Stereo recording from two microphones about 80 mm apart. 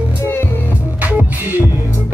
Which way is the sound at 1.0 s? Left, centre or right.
Right.